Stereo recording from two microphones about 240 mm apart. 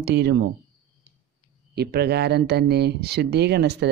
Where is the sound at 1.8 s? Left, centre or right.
Right.